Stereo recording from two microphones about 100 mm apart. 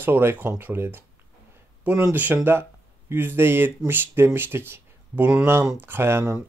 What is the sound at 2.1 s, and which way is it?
Speech, 20° right (ahead or behind).